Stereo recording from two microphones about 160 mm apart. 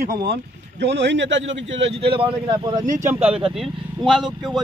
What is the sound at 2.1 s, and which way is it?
Speech, 30° right (ahead or behind).